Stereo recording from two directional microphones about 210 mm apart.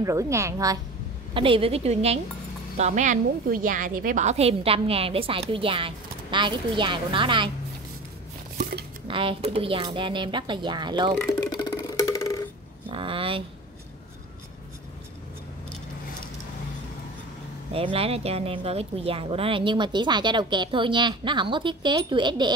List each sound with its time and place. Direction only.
0.0 s a woman's voice: 15° right (ahead or behind)
9.0 s a woman's voice: 25° right (ahead or behind)
11.1 s music: 15° left (ahead or behind)
12.9 s a sound: 25° right (ahead or behind)
17.7 s a woman's voice: 25° right (ahead or behind)